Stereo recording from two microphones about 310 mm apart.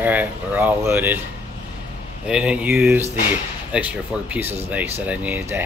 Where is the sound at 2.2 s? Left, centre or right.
Centre.